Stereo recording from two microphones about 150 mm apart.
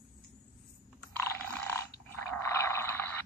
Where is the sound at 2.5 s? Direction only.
15° left (ahead or behind).